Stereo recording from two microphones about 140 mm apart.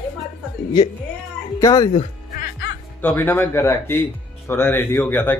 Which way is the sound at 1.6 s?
25° left (ahead or behind).